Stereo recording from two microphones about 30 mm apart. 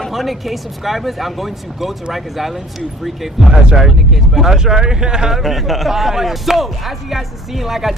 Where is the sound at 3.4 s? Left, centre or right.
Centre.